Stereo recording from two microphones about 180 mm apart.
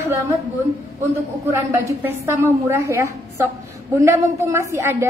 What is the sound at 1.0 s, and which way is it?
A woman's voice, 15° right (ahead or behind).